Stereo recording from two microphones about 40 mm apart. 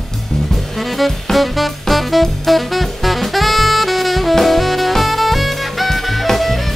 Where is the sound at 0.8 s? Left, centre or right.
Centre.